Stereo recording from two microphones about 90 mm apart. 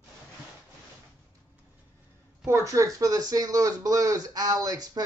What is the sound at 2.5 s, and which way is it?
Speech, 35° right (ahead or behind).